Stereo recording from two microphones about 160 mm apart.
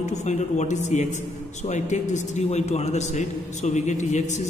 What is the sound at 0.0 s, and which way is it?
A man's voice, 45° left (ahead or behind).